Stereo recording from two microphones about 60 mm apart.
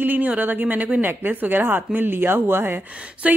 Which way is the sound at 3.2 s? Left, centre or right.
Right.